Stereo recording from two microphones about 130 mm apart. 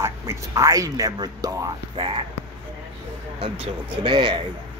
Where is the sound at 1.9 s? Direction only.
45° right (ahead or behind).